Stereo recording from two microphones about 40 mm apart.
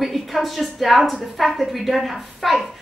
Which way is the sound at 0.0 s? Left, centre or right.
Centre.